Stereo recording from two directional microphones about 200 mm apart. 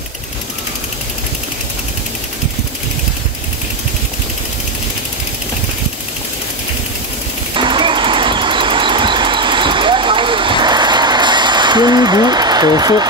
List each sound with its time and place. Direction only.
7.5 s vehicle: 25° right (ahead or behind)